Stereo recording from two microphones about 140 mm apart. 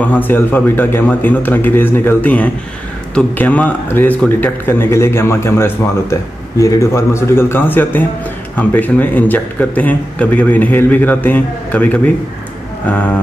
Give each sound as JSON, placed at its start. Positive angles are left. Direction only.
{"t": 0.0, "sound": "speech", "side_deg": 10}